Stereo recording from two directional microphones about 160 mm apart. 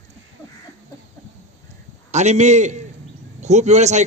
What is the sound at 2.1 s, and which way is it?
A man's voice, 45° right (ahead or behind).